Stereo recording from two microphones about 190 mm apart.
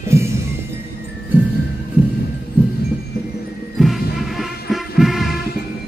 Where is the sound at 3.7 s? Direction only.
Centre (ahead or behind).